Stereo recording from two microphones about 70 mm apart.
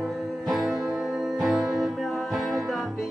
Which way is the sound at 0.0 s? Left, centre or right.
Centre.